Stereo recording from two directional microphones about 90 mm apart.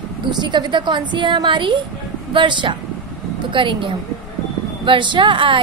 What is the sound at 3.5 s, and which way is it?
A woman's voice, 70° right (ahead or behind).